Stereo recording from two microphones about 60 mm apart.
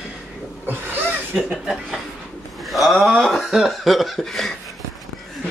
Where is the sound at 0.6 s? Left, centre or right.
Right.